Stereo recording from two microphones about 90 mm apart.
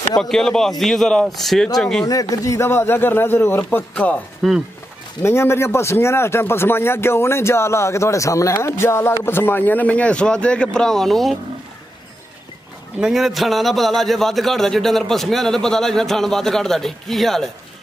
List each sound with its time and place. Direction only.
0.2 s a man's voice: 5° left (ahead or behind)
2.0 s speech: 40° left (ahead or behind); by 3.8 s 25° left (ahead or behind)
3.9 s a man's voice: 15° left (ahead or behind)
4.4 s speech: centre (ahead or behind)
5.2 s a man's voice: 30° left (ahead or behind); by 11.3 s centre (ahead or behind)
13.0 s a man's voice: centre (ahead or behind)